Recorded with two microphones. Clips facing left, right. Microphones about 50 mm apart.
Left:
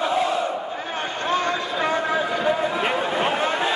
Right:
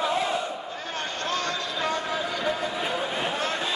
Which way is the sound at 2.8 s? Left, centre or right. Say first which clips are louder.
Left 6 dB; left.